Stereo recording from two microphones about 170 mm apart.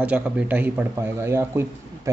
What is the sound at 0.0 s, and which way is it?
Speech, 10° right (ahead or behind).